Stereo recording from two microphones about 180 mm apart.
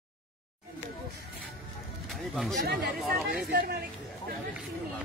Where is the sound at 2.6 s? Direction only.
60° right (ahead or behind).